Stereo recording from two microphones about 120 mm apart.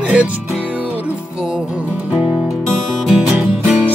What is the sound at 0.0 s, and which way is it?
Music, 10° right (ahead or behind).